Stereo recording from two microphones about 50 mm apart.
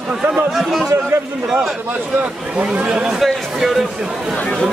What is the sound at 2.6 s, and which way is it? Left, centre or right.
Speech, right.